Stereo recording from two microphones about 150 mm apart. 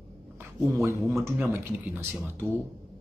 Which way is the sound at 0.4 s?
20° right (ahead or behind).